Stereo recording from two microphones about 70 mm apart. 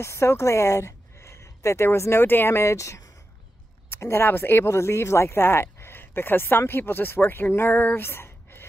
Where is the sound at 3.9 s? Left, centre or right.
Left.